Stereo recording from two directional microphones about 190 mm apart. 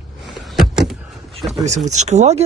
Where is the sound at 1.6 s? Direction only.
40° right (ahead or behind).